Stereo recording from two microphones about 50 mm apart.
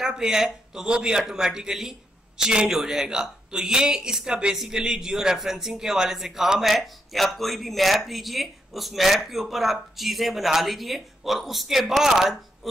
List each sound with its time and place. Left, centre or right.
0.0 s a man's voice: centre